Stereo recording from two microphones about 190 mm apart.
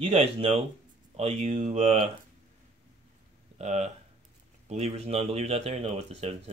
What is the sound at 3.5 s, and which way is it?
Speech, 35° right (ahead or behind).